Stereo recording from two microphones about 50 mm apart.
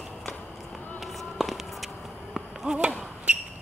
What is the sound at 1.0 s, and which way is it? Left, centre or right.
Insect, centre.